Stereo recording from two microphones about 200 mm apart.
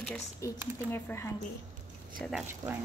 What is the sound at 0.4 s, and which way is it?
Speech, 15° left (ahead or behind).